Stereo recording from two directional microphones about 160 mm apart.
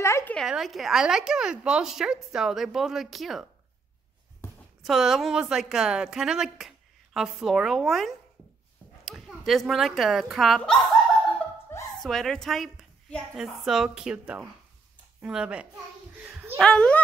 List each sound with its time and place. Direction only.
0.0 s a sound: 15° left (ahead or behind)
0.4 s a woman's voice: centre (ahead or behind)
4.8 s a woman's voice: centre (ahead or behind)
9.5 s a woman's voice: centre (ahead or behind)
12.0 s a woman's voice: centre (ahead or behind)
16.2 s a sound: 5° right (ahead or behind)
16.6 s a woman's voice: 5° left (ahead or behind)